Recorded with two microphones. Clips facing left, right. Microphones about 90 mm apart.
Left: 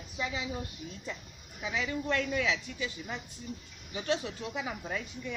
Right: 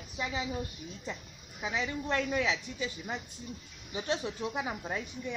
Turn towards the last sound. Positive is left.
turn(degrees=-25)  # may be behind; listen again after turning